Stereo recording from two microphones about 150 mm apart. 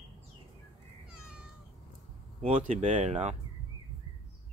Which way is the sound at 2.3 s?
45° right (ahead or behind).